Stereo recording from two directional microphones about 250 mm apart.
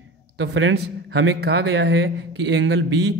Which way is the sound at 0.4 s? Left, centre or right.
Right.